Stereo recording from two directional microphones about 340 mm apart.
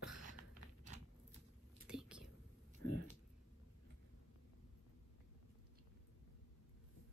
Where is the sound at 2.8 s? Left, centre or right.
Left.